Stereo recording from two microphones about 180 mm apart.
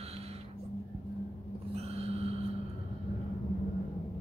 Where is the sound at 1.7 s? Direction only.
35° right (ahead or behind).